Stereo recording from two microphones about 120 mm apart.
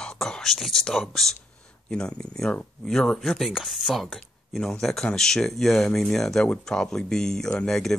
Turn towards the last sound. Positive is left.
turn(degrees=5)  # may be behind; listen again after turning